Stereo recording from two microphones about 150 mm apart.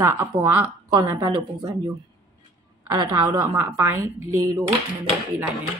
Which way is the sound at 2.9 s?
25° right (ahead or behind).